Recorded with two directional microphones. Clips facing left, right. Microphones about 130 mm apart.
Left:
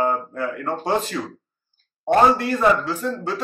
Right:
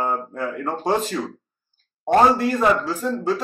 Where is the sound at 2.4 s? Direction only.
5° right (ahead or behind).